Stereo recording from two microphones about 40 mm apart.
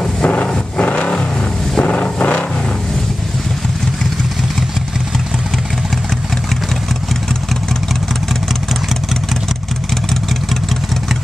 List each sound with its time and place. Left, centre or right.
0.0 s vehicle: left